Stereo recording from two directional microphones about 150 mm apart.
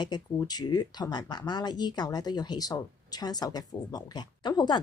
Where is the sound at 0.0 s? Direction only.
30° left (ahead or behind).